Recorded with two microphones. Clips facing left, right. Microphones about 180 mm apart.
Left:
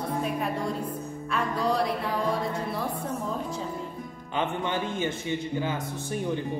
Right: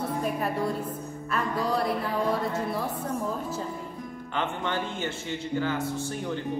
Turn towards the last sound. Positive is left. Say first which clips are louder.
# left 1 dB
turn(degrees=15)  # may be behind; listen again after turning